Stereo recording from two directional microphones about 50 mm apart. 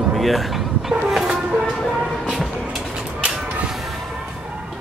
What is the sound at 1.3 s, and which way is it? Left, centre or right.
Music, centre.